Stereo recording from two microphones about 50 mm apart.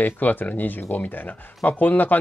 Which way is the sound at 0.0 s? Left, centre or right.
Left.